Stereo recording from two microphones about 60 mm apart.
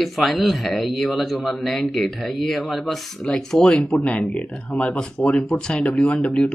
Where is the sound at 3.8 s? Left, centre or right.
Left.